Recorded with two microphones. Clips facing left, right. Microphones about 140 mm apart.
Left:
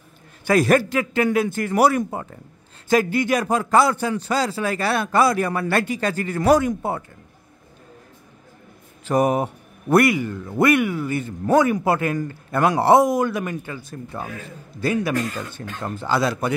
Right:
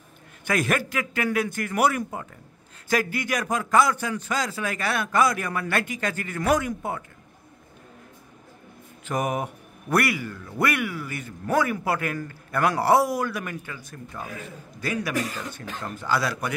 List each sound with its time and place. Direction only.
0.5 s a man's voice: 35° left (ahead or behind)
9.0 s a man's voice: 35° left (ahead or behind)